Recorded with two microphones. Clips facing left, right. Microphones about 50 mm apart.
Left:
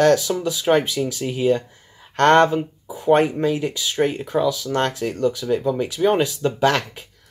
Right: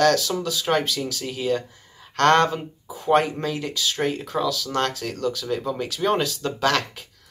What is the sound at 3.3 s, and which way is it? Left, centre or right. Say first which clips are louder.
Speech: left 6 dB; left.